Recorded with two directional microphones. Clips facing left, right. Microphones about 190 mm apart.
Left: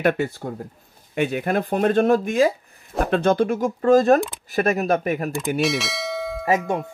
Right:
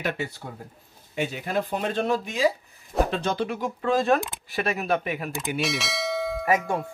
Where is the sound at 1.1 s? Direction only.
60° left (ahead or behind).